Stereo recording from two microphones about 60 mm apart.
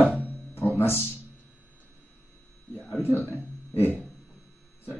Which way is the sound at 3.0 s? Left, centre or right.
Left.